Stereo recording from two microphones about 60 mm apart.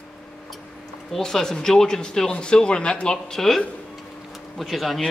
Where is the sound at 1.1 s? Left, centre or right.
Centre.